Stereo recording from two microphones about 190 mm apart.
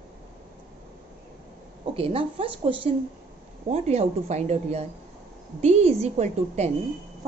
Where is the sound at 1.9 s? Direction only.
30° right (ahead or behind).